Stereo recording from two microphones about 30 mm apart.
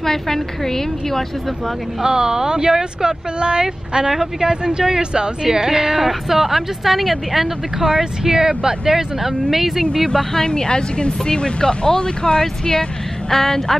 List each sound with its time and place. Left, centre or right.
0.0 s a woman's voice: centre
2.0 s a woman's voice: right
3.3 s a woman's voice: right
5.9 s speech: centre
7.9 s speech: centre
10.0 s a woman's voice: centre
10.5 s speech: left
13.3 s a woman's voice: centre